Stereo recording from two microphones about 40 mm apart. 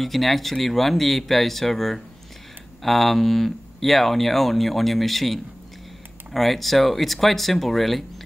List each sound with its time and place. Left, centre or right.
0.0 s speech: centre